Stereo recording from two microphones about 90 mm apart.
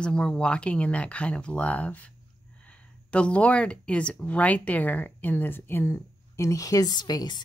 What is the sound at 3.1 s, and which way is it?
Speech, 15° left (ahead or behind).